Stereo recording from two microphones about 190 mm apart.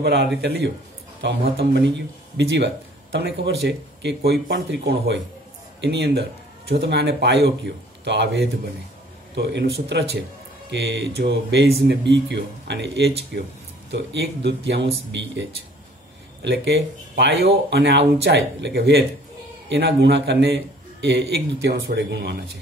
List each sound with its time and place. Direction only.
0.0 s a man's voice: 60° right (ahead or behind)
16.4 s a man's voice: 65° right (ahead or behind)